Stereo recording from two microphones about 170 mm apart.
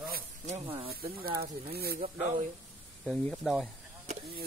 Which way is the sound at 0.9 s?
65° right (ahead or behind).